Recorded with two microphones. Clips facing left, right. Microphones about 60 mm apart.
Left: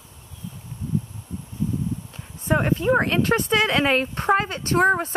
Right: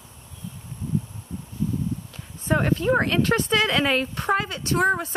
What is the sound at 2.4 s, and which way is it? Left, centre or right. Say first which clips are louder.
Speech: left 1 dB; left.